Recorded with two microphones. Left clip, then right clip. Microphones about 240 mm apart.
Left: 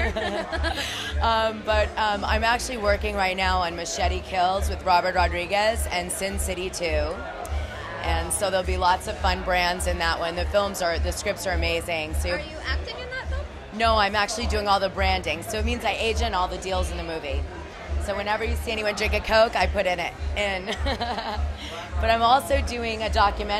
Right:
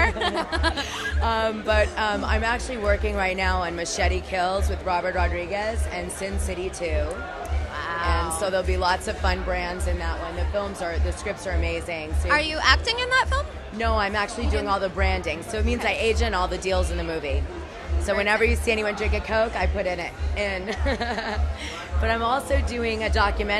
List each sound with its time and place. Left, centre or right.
0.0 s a sound: right
0.9 s speech: centre
8.1 s speech: centre
12.4 s speech: right
13.7 s a woman's voice: centre
18.9 s speech: centre